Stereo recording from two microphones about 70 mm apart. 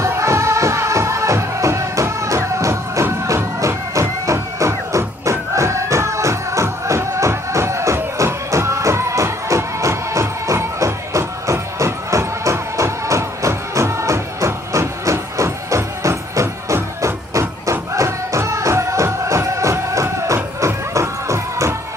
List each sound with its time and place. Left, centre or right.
0.0 s music: right